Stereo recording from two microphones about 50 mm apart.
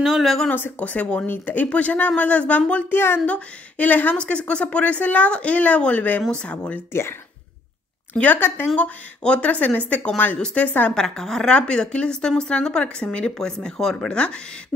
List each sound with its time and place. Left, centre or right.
0.0 s speech: centre
0.5 s speech: left
2.9 s speech: left
3.3 s speech: left
4.2 s speech: left
6.9 s speech: left
8.4 s speech: left
8.7 s speech: left
11.0 s a woman's voice: centre
14.1 s speech: left